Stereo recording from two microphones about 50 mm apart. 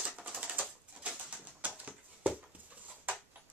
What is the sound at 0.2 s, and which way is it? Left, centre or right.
Bird, right.